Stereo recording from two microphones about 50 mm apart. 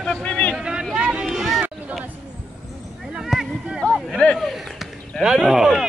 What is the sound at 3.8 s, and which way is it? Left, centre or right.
Speech, left.